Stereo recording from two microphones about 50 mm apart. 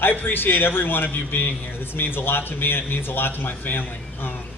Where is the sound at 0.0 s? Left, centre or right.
Left.